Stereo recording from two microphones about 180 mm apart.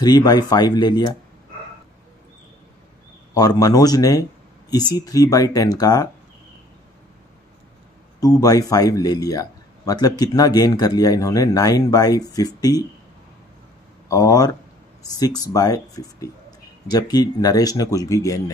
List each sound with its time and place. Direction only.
0.0 s speech: 20° left (ahead or behind)
3.3 s speech: 20° left (ahead or behind)
8.2 s speech: 20° left (ahead or behind)
14.0 s speech: 20° left (ahead or behind)